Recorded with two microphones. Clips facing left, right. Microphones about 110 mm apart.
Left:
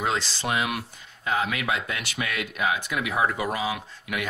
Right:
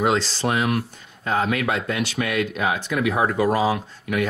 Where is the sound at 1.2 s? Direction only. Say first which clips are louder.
Right 4 dB; 35° right (ahead or behind).